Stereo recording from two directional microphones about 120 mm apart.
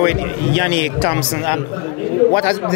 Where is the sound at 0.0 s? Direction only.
20° left (ahead or behind).